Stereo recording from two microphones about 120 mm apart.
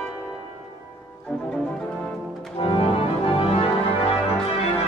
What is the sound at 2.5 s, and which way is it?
Music, 50° left (ahead or behind).